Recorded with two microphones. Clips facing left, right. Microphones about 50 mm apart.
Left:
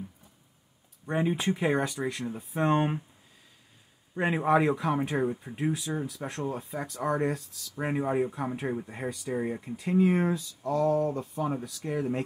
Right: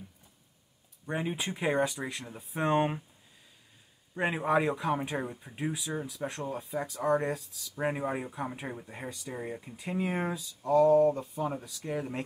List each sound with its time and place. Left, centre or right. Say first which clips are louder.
1.0 s speech: left 6 dB; centre
4.2 s speech: left 3 dB; centre
9.8 s speech: left 8 dB; centre